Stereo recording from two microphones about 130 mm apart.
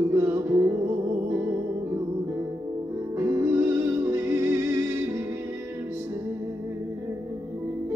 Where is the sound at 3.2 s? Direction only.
20° right (ahead or behind).